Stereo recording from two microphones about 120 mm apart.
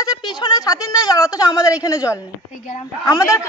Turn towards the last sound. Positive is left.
turn(degrees=25)  # may be behind; listen again after turning